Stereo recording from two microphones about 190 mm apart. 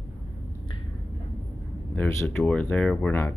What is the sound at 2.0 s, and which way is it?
Speech, 5° left (ahead or behind).